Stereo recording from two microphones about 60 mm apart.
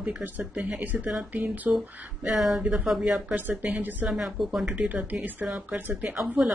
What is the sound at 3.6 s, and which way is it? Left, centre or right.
Speech, right.